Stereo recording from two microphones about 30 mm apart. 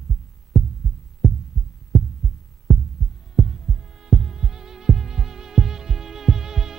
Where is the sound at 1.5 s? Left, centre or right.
Centre.